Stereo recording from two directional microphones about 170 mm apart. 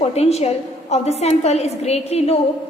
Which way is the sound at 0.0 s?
40° left (ahead or behind).